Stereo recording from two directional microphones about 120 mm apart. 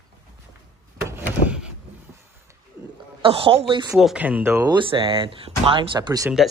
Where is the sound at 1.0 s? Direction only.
20° right (ahead or behind).